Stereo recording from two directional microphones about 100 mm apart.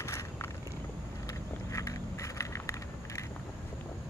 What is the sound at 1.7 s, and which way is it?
Vehicle, 30° left (ahead or behind).